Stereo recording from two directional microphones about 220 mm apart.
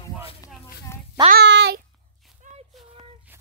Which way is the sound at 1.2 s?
50° right (ahead or behind).